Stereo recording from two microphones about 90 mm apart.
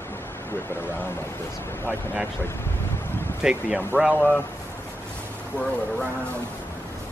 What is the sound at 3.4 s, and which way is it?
Speech, 10° right (ahead or behind).